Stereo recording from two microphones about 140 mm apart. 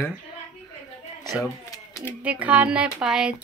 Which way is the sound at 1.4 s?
20° left (ahead or behind).